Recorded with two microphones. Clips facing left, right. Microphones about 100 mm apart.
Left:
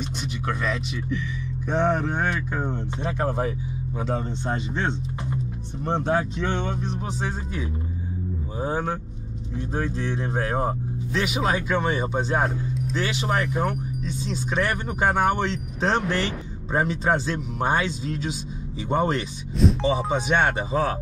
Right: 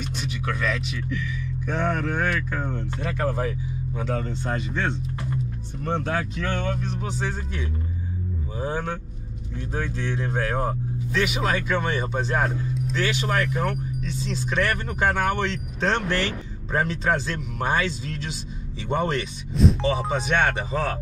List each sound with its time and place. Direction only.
0.6 s speech: centre (ahead or behind)
1.7 s speech: 25° left (ahead or behind)
3.2 s speech: 5° left (ahead or behind)
4.1 s speech: 15° left (ahead or behind)
5.3 s music: 15° left (ahead or behind)
6.0 s speech: 20° left (ahead or behind)
6.9 s speech: centre (ahead or behind)
9.9 s speech: 5° left (ahead or behind)